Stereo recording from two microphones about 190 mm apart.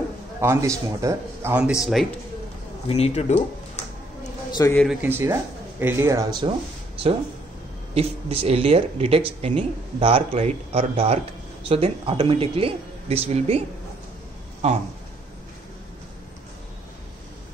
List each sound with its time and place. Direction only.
0.4 s speech: 15° right (ahead or behind)
2.9 s speech: 35° left (ahead or behind)
4.6 s a man's voice: 15° left (ahead or behind)
4.8 s speech: 10° right (ahead or behind)
7.9 s speech: 30° right (ahead or behind)